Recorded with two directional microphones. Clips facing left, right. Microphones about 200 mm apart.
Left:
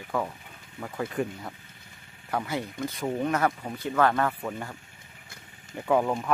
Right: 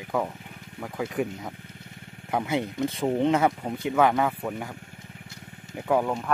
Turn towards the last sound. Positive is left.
turn(degrees=0)  # may be behind; listen again after turning